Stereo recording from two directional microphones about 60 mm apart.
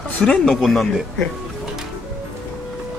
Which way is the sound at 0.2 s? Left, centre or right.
Centre.